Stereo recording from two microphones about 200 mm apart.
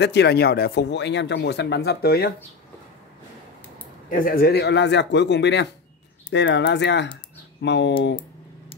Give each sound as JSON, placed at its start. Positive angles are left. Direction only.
{"t": 0.0, "sound": "speech", "side_deg": 55}
{"t": 4.1, "sound": "speech", "side_deg": 45}